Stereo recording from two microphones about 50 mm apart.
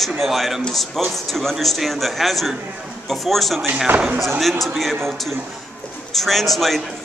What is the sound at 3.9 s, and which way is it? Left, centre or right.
Speech, right.